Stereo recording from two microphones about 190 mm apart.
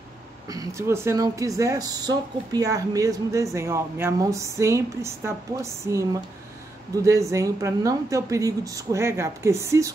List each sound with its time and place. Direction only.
0.5 s speech: 15° right (ahead or behind)